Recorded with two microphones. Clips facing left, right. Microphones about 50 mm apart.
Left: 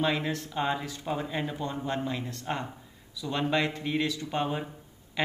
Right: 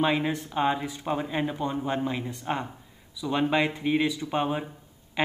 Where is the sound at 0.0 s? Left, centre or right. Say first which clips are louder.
Right 3 dB; centre.